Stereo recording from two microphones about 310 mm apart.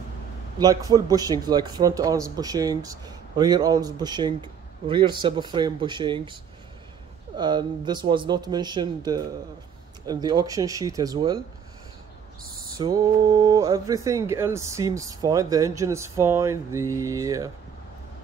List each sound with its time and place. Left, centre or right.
0.6 s a man's voice: centre
7.3 s a man's voice: centre
12.7 s a man's voice: centre